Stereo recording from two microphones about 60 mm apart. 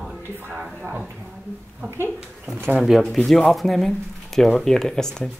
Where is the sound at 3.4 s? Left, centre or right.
Centre.